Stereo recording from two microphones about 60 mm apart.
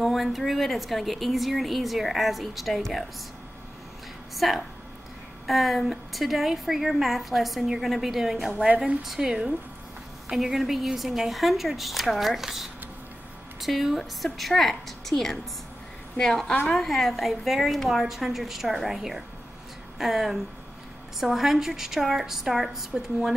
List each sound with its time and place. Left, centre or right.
0.0 s a woman's voice: centre
4.4 s a woman's voice: centre
8.6 s a woman's voice: centre